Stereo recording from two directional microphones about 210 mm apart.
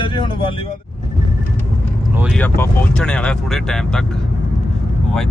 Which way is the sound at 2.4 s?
5° left (ahead or behind).